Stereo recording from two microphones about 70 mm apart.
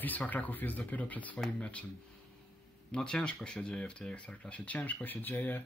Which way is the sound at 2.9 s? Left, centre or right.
Centre.